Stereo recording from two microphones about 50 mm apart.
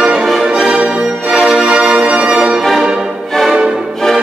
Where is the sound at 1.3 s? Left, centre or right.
Centre.